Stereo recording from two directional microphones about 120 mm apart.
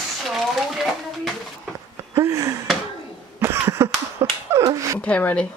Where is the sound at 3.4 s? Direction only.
20° right (ahead or behind).